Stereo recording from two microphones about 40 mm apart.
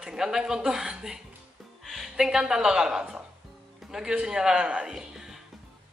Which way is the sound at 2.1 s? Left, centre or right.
Centre.